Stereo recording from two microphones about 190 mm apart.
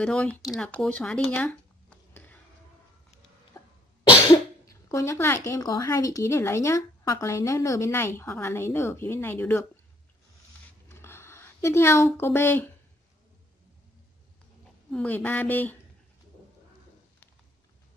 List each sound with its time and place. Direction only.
0.0 s speech: 5° left (ahead or behind)
1.3 s a sound: 10° left (ahead or behind)
3.6 s cough: 15° left (ahead or behind)
4.6 s speech: 15° left (ahead or behind)
10.9 s a sound: 15° left (ahead or behind)
14.9 s speech: 5° left (ahead or behind)